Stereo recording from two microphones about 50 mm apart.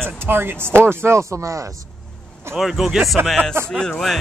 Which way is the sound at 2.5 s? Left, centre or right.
Centre.